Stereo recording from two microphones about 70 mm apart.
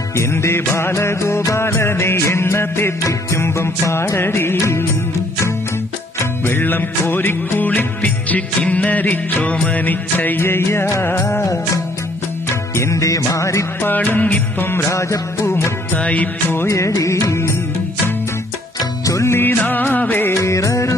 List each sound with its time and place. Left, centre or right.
0.2 s music: left
6.4 s music: left
11.4 s music: left
13.8 s music: left
16.0 s music: left
16.5 s music: left
19.0 s music: left
20.3 s music: left